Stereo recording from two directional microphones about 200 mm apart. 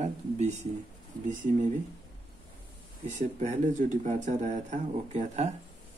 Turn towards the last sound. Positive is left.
turn(degrees=-35)  # may be behind; listen again after turning